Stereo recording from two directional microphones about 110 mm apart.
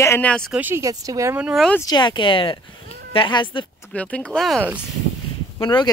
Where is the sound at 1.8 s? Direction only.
40° left (ahead or behind).